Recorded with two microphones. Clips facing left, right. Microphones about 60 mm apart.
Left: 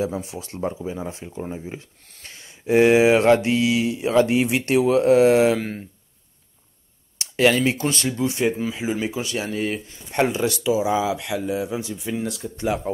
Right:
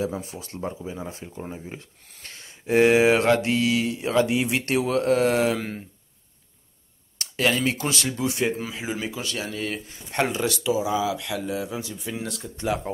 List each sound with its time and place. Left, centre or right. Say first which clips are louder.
0.4 s speech: left 5 dB; left
1.4 s speech: left 5 dB; centre
4.1 s speech: left 4 dB; left
4.5 s speech: left 5 dB; centre
5.5 s speech: left 4 dB; centre
7.3 s speech: left 5 dB; left
7.8 s speech: left 3 dB; centre
9.0 s speech: left 4 dB; centre
10.1 s speech: left 3 dB; centre
10.9 s speech: left 3 dB; left
11.1 s speech: left 4 dB; centre